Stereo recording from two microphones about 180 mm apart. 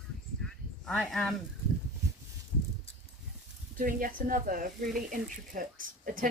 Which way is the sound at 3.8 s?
50° right (ahead or behind).